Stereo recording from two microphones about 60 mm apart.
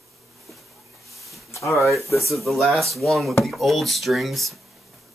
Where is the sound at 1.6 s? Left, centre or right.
Centre.